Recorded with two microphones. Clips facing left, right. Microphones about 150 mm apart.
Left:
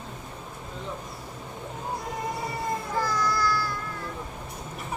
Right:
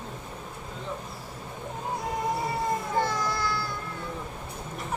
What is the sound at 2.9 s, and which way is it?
Music, 25° right (ahead or behind).